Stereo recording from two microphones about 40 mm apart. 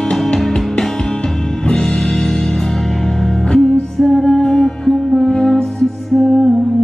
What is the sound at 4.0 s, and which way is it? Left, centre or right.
Music, centre.